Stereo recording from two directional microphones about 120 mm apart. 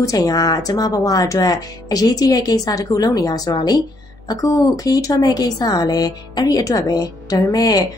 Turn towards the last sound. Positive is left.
turn(degrees=30)  # may be behind; listen again after turning